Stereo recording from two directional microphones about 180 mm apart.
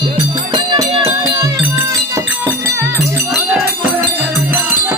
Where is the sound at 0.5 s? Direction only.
25° right (ahead or behind).